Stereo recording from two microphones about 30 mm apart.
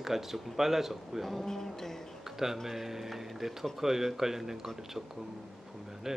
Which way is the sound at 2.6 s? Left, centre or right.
Centre.